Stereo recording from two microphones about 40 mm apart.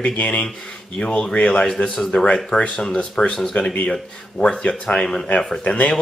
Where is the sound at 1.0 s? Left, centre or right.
Left.